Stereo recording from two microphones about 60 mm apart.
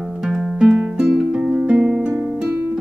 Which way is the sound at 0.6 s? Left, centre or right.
Centre.